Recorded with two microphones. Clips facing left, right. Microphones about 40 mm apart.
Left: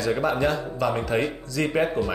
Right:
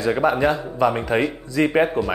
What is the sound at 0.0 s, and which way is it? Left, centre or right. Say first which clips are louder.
Speech: right 4 dB; right.